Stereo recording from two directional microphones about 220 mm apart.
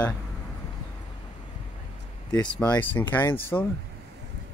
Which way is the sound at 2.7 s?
10° left (ahead or behind).